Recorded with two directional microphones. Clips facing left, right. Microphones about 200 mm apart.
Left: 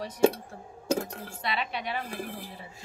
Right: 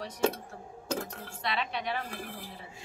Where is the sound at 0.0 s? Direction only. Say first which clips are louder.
Left 6 dB; 10° left (ahead or behind).